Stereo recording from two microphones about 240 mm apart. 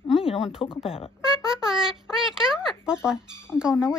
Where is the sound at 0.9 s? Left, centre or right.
Left.